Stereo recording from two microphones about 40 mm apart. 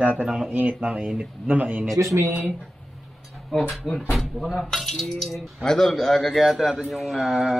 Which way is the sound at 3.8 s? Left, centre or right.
Centre.